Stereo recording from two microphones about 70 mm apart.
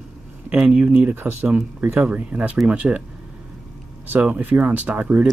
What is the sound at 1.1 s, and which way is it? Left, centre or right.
Speech, right.